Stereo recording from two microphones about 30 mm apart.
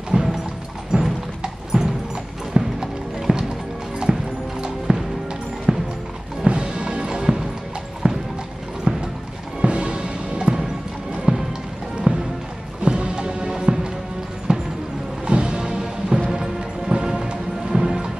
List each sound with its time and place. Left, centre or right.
0.1 s music: right
0.9 s a sound: centre
1.4 s clip-clop: right
2.6 s clip-clop: right
4.1 s clip-clop: centre
4.9 s music: right
5.7 s music: centre
6.4 s music: right
7.2 s music: centre
8.0 s clip-clop: right
8.9 s music: right
12.1 s music: right
15.8 s music: centre